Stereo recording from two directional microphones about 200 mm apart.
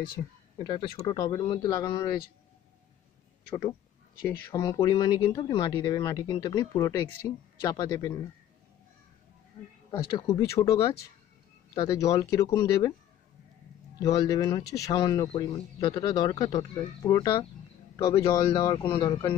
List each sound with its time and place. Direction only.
0.6 s speech: 20° left (ahead or behind)
3.4 s speech: 25° left (ahead or behind)
4.3 s speech: 15° left (ahead or behind)
9.8 s speech: 20° left (ahead or behind)
13.9 s speech: 20° left (ahead or behind)